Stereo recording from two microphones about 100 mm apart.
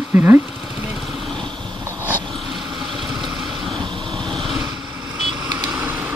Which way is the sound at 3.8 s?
55° right (ahead or behind).